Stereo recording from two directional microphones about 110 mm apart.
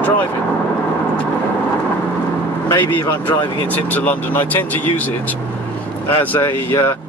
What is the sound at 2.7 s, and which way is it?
Speech, 20° left (ahead or behind).